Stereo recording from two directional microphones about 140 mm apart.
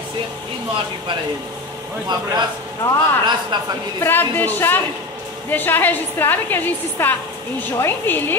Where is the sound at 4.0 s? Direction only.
15° left (ahead or behind).